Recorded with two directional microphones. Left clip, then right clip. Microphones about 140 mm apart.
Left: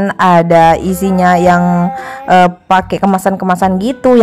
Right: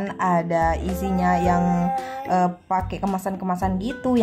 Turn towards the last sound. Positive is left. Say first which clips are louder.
# left 14 dB
turn(degrees=50)  # may be behind; listen again after turning